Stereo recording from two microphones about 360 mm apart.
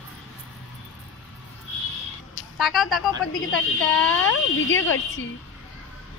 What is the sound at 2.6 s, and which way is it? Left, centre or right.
A woman's voice, centre.